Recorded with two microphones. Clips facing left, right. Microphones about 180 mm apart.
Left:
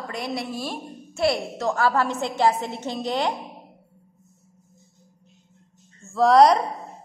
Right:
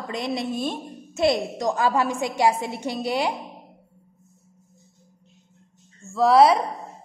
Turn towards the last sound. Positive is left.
turn(degrees=-5)  # may be behind; listen again after turning